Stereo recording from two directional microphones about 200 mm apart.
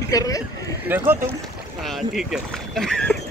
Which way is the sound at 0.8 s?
10° right (ahead or behind).